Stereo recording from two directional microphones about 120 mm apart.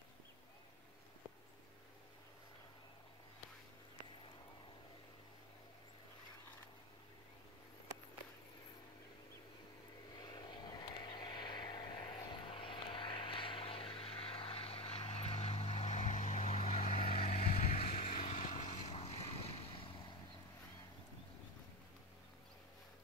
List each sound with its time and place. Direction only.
10.1 s vehicle: 35° left (ahead or behind)